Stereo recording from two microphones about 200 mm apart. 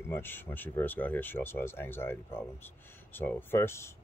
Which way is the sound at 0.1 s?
10° left (ahead or behind).